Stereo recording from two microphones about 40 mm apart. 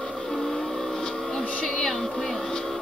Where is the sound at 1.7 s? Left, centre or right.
Centre.